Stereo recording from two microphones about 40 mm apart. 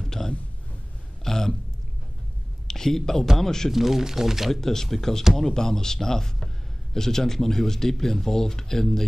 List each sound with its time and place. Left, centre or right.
0.0 s a sound: centre
2.7 s speech: centre
3.7 s speech: centre
4.5 s speech: centre